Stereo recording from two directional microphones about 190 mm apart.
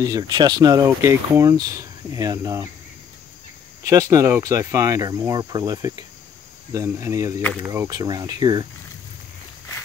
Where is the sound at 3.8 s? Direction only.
15° right (ahead or behind).